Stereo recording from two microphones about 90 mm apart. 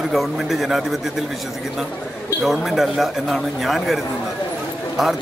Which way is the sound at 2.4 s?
5° right (ahead or behind).